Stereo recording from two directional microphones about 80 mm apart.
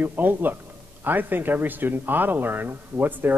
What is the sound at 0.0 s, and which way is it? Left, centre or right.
A man's voice, right.